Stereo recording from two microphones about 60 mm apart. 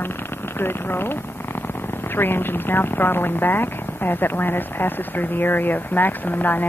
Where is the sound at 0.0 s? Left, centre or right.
Left.